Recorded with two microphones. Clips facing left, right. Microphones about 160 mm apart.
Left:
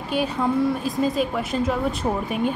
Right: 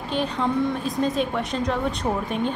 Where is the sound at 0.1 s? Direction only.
5° left (ahead or behind).